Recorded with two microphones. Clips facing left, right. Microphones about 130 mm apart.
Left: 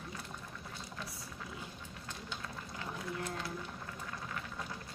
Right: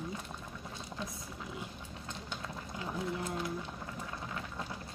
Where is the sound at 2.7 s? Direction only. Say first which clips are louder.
Right 5 dB; 20° right (ahead or behind).